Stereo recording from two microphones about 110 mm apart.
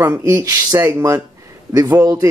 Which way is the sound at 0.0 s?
25° right (ahead or behind).